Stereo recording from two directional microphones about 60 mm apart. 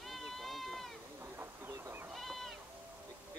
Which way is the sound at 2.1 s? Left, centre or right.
Centre.